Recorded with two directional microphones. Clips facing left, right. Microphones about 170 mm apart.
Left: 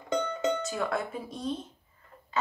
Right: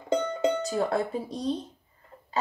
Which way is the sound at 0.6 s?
35° right (ahead or behind).